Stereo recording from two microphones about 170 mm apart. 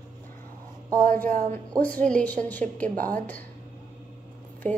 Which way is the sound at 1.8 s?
10° left (ahead or behind).